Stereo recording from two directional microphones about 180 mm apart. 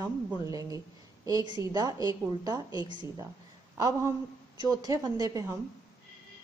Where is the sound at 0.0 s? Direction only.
20° right (ahead or behind).